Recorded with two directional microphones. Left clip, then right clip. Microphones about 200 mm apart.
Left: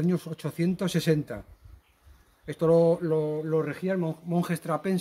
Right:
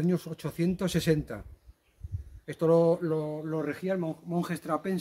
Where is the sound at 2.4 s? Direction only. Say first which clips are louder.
Left 2 dB; centre (ahead or behind); by 4.9 s 35° left (ahead or behind).